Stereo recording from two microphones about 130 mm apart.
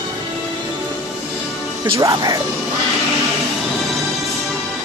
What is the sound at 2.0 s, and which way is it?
Speech, 30° right (ahead or behind).